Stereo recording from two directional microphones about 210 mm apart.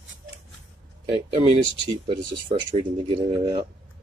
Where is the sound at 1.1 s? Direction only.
25° right (ahead or behind).